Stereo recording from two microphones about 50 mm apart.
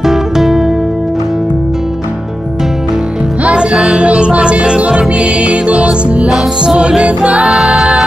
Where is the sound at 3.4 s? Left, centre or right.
Centre.